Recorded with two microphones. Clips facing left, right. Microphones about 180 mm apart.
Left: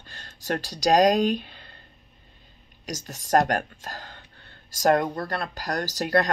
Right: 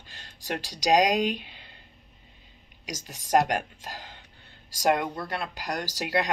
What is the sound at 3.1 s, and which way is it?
Speech, 45° left (ahead or behind).